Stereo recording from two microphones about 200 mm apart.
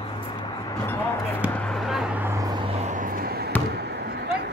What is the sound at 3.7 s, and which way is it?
Basketball bounce, 55° right (ahead or behind).